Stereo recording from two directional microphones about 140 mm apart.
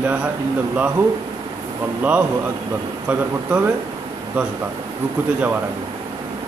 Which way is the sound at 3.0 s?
15° right (ahead or behind).